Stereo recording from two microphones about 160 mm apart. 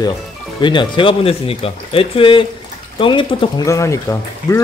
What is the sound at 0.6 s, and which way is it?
Speech, 30° left (ahead or behind).